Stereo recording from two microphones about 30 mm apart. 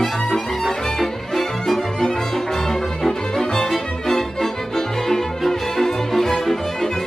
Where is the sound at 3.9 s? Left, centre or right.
Centre.